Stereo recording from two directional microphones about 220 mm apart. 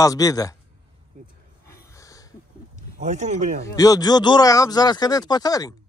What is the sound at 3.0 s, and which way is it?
Speech, 35° right (ahead or behind).